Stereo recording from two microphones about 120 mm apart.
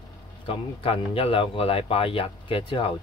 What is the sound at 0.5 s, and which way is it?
Speech, 50° left (ahead or behind).